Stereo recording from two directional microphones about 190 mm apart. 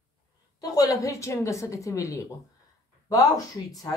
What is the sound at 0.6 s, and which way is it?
Speech, 20° left (ahead or behind).